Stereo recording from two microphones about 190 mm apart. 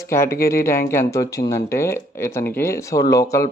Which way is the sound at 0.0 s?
15° left (ahead or behind).